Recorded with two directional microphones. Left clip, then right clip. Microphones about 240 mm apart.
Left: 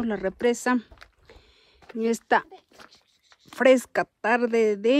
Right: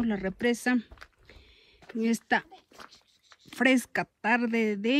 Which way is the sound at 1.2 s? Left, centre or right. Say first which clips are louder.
Left 2 dB; centre.